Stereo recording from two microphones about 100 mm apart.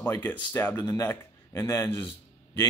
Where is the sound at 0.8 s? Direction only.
30° left (ahead or behind).